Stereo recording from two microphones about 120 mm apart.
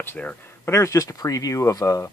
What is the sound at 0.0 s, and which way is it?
Speech, 15° left (ahead or behind).